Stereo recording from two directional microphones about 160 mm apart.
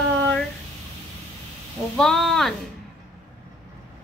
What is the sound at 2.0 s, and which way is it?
Speech, centre (ahead or behind).